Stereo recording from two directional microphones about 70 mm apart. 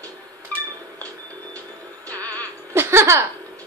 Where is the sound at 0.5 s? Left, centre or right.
Left.